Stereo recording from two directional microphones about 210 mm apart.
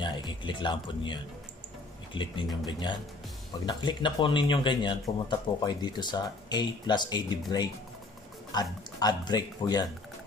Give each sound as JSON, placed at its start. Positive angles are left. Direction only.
{"t": 0.0, "sound": "speech", "side_deg": 20}